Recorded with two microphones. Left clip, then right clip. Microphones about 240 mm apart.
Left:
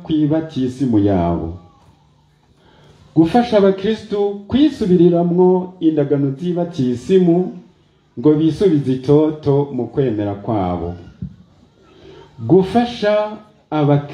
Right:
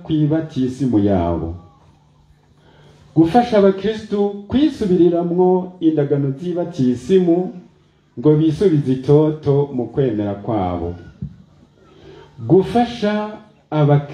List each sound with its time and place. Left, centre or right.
0.0 s speech: left
3.2 s speech: left
12.1 s speech: left